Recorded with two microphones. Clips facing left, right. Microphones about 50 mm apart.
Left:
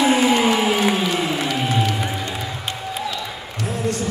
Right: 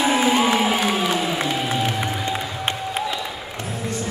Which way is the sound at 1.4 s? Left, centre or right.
Right.